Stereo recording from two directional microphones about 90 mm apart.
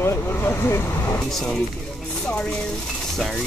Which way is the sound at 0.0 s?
25° left (ahead or behind).